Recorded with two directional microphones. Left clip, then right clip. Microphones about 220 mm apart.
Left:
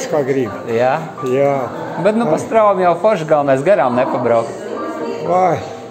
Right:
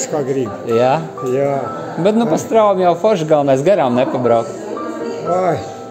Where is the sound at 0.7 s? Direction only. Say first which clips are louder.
Right 2 dB; 45° right (ahead or behind).